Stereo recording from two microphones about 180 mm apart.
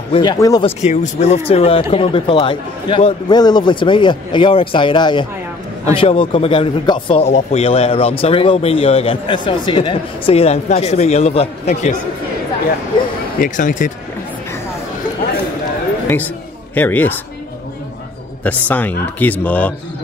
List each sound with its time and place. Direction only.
0.1 s speech: 25° left (ahead or behind)
0.7 s speech: 40° left (ahead or behind)
13.4 s speech: 45° left (ahead or behind)
16.7 s a man's voice: 10° left (ahead or behind)
18.4 s a man's voice: 10° left (ahead or behind)